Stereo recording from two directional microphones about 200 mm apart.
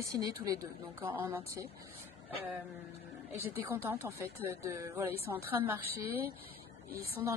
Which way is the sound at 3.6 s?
10° right (ahead or behind).